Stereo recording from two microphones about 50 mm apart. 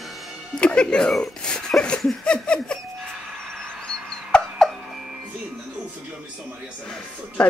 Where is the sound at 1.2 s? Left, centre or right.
Centre.